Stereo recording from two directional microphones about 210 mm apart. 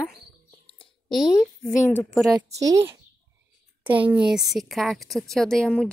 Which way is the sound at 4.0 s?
5° right (ahead or behind).